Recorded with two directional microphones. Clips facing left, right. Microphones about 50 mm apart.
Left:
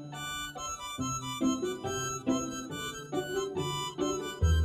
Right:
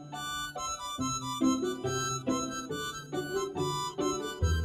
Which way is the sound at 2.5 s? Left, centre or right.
Left.